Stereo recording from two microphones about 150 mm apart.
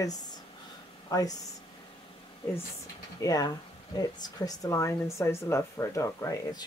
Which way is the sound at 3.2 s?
25° left (ahead or behind).